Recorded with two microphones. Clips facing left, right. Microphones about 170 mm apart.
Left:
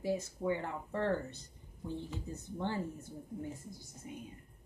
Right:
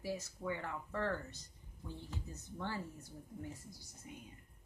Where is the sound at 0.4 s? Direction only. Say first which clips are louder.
Left 6 dB; 25° left (ahead or behind).